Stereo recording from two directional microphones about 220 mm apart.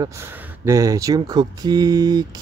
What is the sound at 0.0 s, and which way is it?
Speech, 15° right (ahead or behind).